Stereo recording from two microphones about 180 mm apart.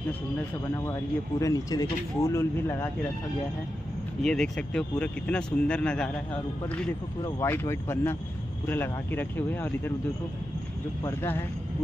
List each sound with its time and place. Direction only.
1.4 s speech: 20° left (ahead or behind)
4.2 s speech: 5° left (ahead or behind)
7.2 s speech: 15° left (ahead or behind)
11.1 s speech: 10° left (ahead or behind)